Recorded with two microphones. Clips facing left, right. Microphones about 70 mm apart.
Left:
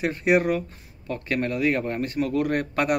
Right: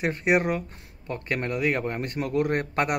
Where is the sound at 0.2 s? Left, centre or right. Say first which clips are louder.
Left 3 dB; centre.